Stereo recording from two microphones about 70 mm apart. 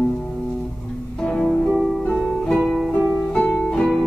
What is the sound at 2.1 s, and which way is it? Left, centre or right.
Music, centre.